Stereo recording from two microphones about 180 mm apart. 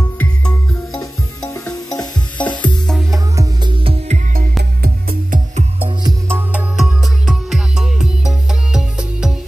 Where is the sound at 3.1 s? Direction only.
20° right (ahead or behind).